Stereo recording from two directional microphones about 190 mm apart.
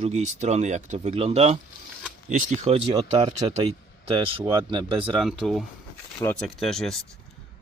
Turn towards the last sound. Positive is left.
turn(degrees=0)  # may be behind; listen again after turning